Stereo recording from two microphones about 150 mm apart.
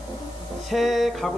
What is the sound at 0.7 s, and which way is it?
Speech, centre (ahead or behind).